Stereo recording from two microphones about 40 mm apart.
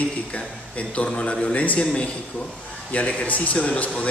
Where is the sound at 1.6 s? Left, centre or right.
Left.